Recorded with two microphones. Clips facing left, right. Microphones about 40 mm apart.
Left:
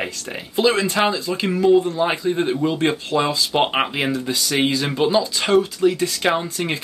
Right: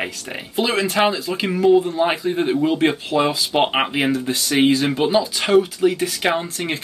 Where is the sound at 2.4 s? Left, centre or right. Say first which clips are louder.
Right 2 dB; centre.